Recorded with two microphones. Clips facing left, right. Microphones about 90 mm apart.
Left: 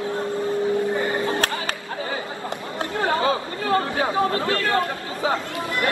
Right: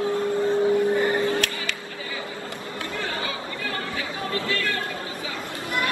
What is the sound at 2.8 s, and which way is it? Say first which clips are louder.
Chatter: left 9 dB; 30° left (ahead or behind).